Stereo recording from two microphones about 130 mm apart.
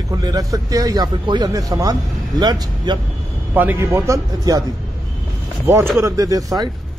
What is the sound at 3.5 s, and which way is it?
Speech, 15° right (ahead or behind).